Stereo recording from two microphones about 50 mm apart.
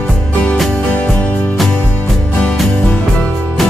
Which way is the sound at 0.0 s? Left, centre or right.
Left.